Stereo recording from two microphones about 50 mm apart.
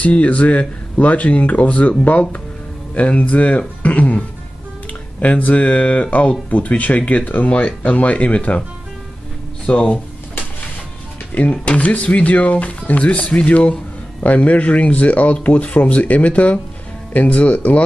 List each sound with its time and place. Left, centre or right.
0.0 s speech: left
5.2 s speech: left
9.7 s speech: left
11.5 s speech: left